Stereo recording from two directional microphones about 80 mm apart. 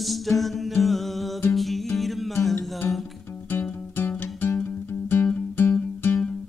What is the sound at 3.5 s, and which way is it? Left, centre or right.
Music, left.